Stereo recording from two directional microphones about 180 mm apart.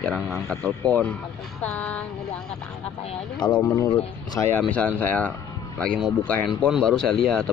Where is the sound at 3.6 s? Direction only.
15° left (ahead or behind).